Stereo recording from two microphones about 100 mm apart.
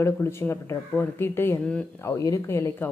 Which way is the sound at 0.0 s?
25° left (ahead or behind).